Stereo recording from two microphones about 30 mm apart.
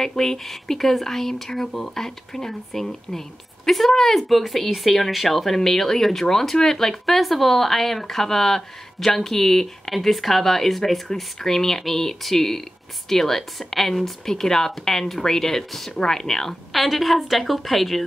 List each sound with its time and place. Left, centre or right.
0.0 s a woman's voice: centre
16.7 s a woman's voice: centre